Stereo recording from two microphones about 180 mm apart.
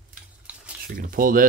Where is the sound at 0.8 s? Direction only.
50° right (ahead or behind).